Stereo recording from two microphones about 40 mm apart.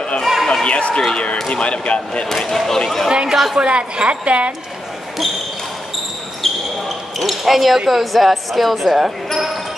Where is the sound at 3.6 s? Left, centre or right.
Right.